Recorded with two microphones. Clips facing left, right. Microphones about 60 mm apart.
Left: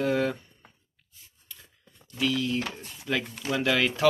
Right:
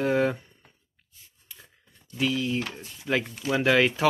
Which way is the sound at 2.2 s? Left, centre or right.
Centre.